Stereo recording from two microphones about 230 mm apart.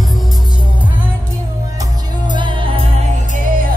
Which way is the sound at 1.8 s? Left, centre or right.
Centre.